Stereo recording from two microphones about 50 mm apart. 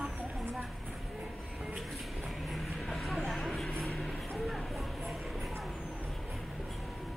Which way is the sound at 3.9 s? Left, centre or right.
Centre.